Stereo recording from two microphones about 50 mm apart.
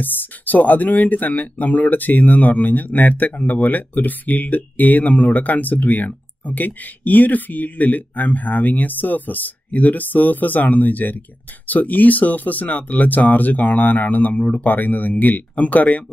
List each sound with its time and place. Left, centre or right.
0.0 s speech: left